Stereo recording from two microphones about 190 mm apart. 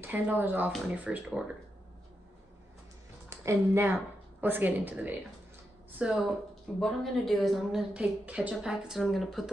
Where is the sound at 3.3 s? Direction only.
15° right (ahead or behind).